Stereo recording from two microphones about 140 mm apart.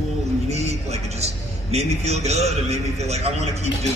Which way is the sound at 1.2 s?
50° right (ahead or behind).